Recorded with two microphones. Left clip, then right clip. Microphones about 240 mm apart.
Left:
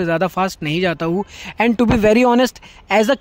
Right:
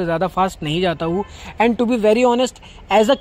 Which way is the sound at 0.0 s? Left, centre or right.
Left.